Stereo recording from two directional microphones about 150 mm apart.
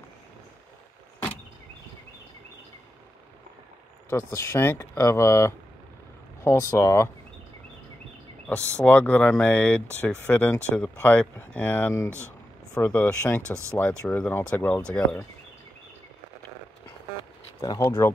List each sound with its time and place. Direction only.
4.1 s speech: 15° left (ahead or behind)
8.5 s speech: 20° right (ahead or behind)
8.8 s speech: 10° left (ahead or behind)
17.6 s speech: 20° left (ahead or behind)